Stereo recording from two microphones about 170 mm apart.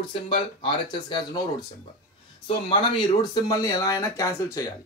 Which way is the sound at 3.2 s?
25° left (ahead or behind).